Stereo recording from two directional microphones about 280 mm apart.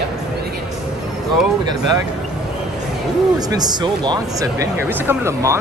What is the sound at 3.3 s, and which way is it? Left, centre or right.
Speech, centre.